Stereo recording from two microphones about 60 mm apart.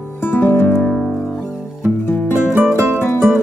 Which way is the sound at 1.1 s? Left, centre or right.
Centre.